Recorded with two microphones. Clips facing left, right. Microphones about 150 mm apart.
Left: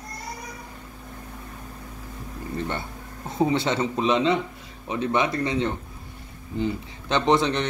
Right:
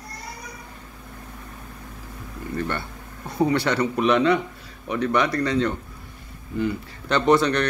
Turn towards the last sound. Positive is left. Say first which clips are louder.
# right 3 dB
turn(degrees=20)  # may be behind; listen again after turning